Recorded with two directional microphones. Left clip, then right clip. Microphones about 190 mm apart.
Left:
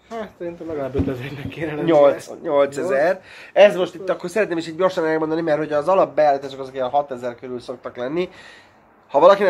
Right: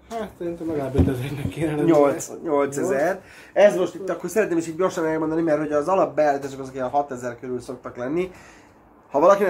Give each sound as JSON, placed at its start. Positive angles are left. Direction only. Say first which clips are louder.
{"t": 0.1, "sound": "speech", "louder": "even", "side_deg": -20}
{"t": 1.9, "sound": "speech", "louder": "left 4 dB", "side_deg": 30}